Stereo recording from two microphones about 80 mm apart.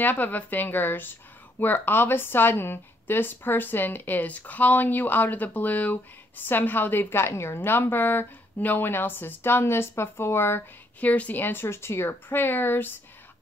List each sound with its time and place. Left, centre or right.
0.0 s a woman's voice: left